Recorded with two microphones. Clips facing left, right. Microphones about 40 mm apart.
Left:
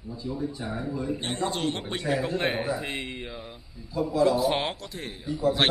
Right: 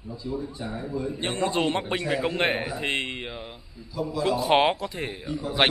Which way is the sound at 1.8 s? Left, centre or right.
Right.